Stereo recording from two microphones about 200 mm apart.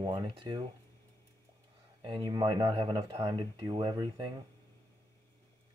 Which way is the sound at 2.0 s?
25° right (ahead or behind).